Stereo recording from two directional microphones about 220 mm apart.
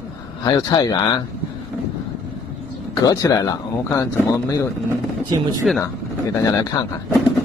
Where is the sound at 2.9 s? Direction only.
15° left (ahead or behind).